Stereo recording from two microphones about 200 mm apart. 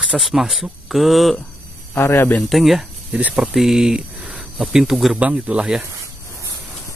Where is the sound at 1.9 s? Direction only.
10° left (ahead or behind).